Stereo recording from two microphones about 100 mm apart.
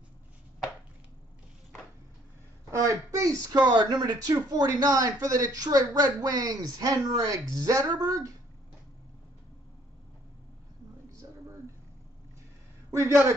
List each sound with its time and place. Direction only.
2.7 s speech: 30° right (ahead or behind)
12.9 s speech: 30° right (ahead or behind)